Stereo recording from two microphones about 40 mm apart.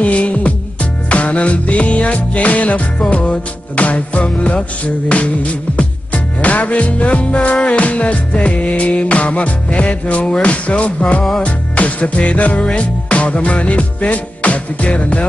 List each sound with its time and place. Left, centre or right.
0.0 s music: left